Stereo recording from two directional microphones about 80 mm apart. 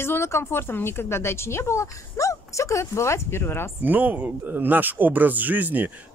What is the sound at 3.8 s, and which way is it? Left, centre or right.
Speech, right.